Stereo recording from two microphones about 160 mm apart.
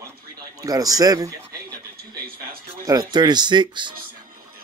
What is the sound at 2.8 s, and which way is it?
Speech, 25° right (ahead or behind).